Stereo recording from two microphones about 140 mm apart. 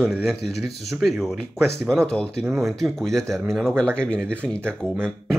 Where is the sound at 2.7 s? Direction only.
Centre (ahead or behind).